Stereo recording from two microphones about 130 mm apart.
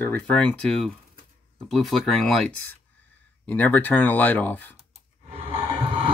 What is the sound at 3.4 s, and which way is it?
Speech, 15° left (ahead or behind).